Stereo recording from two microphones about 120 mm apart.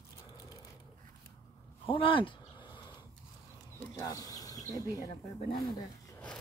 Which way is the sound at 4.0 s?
30° left (ahead or behind).